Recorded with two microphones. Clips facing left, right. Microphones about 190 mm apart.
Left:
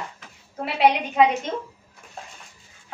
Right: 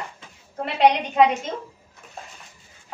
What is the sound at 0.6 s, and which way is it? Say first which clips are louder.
Speech: right 1 dB; 5° left (ahead or behind).